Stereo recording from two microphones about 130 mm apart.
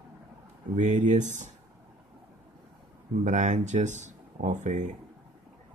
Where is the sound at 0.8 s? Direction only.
70° right (ahead or behind).